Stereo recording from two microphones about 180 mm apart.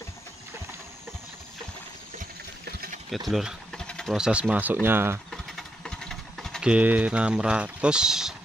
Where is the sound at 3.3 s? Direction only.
Centre (ahead or behind).